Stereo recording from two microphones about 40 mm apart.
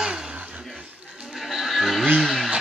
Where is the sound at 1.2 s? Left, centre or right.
Centre.